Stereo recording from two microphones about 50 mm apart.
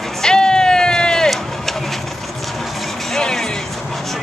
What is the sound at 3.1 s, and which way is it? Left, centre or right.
Music, centre.